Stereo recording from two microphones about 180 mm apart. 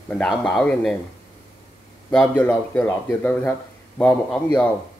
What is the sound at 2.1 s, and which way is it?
Speech, 10° left (ahead or behind).